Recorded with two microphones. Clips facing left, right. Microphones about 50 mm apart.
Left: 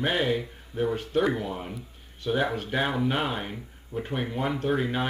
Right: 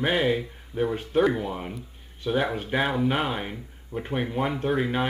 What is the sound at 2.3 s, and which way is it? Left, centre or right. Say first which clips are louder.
Speech: right 1 dB; centre.